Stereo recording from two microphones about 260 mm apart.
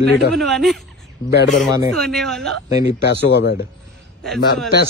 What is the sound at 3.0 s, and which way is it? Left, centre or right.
Speech, left.